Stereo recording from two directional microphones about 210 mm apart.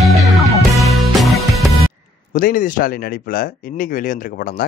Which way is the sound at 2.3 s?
40° left (ahead or behind).